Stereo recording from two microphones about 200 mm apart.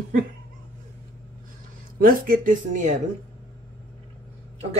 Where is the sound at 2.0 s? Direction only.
45° right (ahead or behind).